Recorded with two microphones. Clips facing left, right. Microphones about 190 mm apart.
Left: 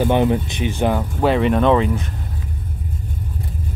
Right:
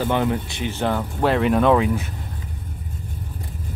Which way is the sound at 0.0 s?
20° left (ahead or behind).